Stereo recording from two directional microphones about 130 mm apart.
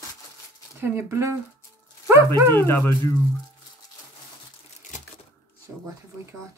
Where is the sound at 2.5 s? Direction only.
20° left (ahead or behind).